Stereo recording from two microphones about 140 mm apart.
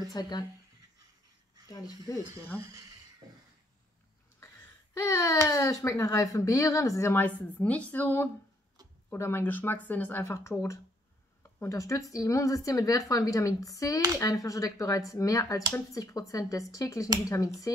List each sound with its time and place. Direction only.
0.1 s speech: 30° left (ahead or behind)
2.1 s speech: 25° left (ahead or behind)
4.9 s speech: 20° left (ahead or behind)